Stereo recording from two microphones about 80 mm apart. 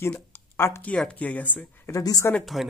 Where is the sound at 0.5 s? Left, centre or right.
Left.